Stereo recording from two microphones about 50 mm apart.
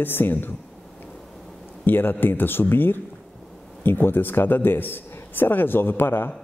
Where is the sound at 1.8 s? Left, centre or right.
Left.